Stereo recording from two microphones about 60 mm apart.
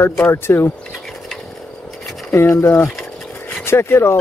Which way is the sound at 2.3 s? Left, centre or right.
Left.